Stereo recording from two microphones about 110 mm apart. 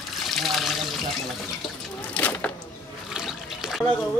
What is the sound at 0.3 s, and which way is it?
Water, centre (ahead or behind).